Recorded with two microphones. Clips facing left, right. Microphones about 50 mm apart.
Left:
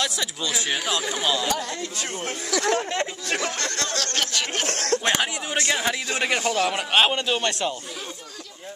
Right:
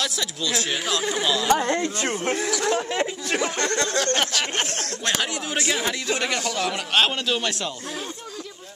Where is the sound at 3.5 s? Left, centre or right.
Right.